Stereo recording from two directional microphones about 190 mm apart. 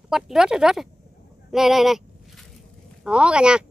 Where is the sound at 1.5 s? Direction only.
Centre (ahead or behind).